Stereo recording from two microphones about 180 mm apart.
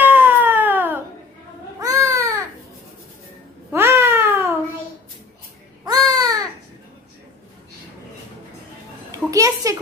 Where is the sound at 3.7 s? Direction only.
15° right (ahead or behind).